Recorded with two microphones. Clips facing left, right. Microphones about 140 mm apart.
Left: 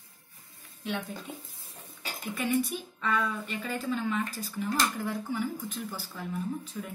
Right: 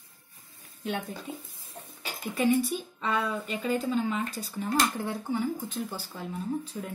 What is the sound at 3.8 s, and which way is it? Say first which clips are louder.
Speech: left 2 dB; 35° right (ahead or behind).